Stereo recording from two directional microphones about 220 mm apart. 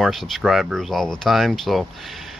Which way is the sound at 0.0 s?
Centre (ahead or behind).